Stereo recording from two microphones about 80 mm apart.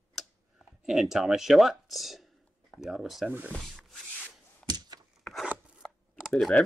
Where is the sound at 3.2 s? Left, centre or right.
Centre.